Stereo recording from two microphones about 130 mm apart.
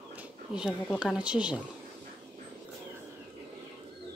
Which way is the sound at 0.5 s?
5° right (ahead or behind).